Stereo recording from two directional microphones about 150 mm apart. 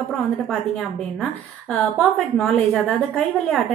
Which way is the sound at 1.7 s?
5° left (ahead or behind).